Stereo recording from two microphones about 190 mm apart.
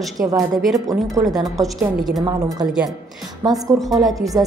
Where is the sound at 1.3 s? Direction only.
Centre (ahead or behind).